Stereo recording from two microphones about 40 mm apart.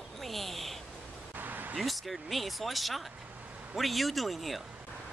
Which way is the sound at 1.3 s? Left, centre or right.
Right.